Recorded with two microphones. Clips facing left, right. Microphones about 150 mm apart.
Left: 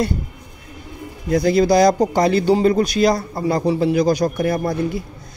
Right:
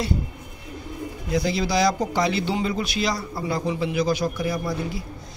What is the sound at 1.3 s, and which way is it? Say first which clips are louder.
A man's voice: left 9 dB; 50° left (ahead or behind).